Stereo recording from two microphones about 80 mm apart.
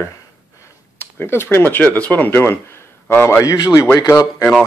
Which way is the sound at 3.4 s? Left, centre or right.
Left.